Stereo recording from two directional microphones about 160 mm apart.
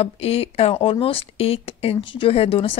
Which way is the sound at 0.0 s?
40° left (ahead or behind).